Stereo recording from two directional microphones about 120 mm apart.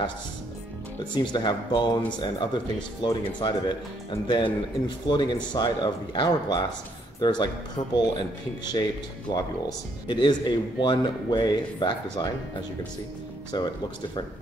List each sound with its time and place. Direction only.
1.1 s speech: 40° left (ahead or behind)
9.3 s speech: 35° left (ahead or behind)